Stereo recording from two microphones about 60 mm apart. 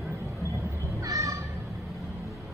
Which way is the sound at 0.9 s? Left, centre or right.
Right.